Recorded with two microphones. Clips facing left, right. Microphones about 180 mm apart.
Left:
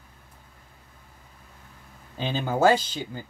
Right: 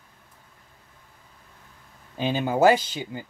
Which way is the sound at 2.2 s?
15° right (ahead or behind).